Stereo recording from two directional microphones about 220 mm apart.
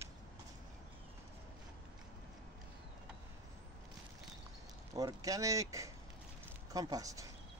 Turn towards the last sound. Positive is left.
turn(degrees=-15)  # may be behind; listen again after turning